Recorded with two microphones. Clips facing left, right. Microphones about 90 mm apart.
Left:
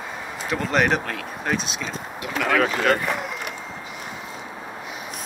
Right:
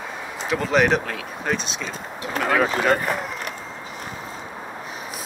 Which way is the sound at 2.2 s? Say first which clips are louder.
Right 1 dB; 35° right (ahead or behind).